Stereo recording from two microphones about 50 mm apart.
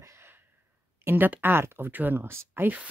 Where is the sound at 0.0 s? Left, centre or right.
Right.